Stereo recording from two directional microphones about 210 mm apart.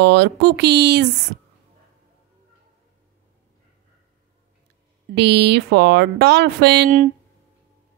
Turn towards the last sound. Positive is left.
turn(degrees=-45)  # may be behind; listen again after turning